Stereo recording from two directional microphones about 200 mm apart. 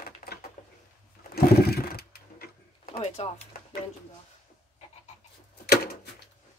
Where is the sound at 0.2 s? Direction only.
30° left (ahead or behind).